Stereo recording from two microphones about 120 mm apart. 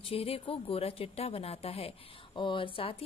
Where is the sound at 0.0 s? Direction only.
55° left (ahead or behind).